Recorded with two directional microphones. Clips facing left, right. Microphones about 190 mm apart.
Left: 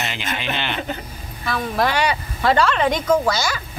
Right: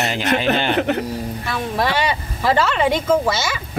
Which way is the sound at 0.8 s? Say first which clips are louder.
Right 9 dB; 70° right (ahead or behind).